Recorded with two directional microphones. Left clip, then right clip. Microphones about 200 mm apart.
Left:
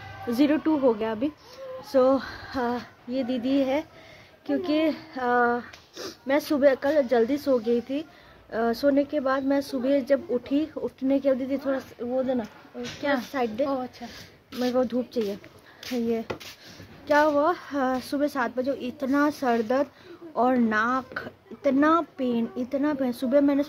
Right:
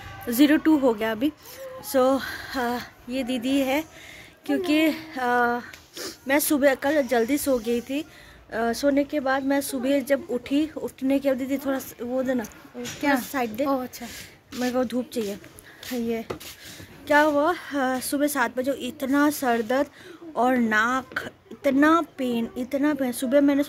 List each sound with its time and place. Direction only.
0.3 s speech: centre (ahead or behind)
13.7 s speech: 30° right (ahead or behind)
14.6 s speech: 5° left (ahead or behind)
16.1 s speech: 10° left (ahead or behind)